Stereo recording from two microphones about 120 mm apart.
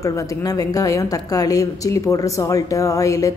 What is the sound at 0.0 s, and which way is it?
A woman's voice, 30° left (ahead or behind).